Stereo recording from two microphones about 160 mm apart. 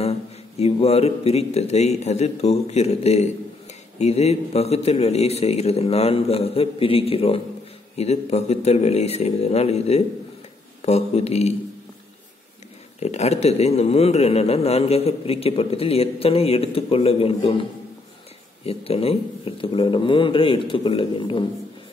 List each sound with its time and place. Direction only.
0.0 s a man's voice: 40° left (ahead or behind)
13.0 s a man's voice: 45° left (ahead or behind)
18.7 s a man's voice: 40° left (ahead or behind)